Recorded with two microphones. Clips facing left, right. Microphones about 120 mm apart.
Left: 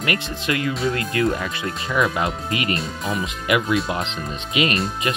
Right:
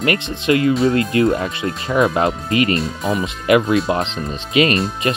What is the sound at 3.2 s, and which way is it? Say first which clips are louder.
Speech: right 7 dB; 35° right (ahead or behind).